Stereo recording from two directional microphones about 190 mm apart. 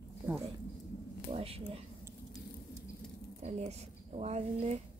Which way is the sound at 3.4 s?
35° right (ahead or behind).